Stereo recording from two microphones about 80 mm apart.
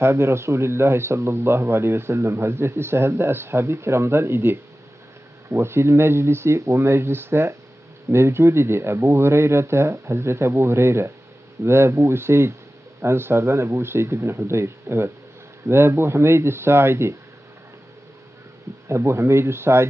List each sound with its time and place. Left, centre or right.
0.0 s speech: right
18.9 s speech: right